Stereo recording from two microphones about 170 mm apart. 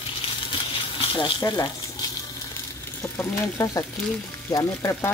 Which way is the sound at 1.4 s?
20° left (ahead or behind).